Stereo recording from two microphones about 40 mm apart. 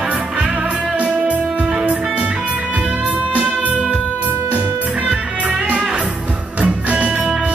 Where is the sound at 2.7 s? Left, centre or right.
Right.